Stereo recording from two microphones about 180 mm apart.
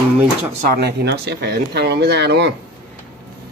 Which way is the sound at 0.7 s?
65° right (ahead or behind).